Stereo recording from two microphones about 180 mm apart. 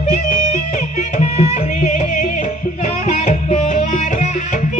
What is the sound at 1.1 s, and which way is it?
Music, 40° left (ahead or behind).